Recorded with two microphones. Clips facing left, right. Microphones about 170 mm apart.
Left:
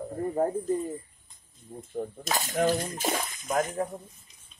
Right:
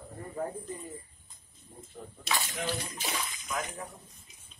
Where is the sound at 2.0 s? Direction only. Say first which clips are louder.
Left 5 dB; 45° left (ahead or behind).